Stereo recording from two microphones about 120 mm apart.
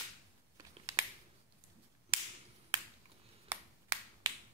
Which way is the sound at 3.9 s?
30° right (ahead or behind).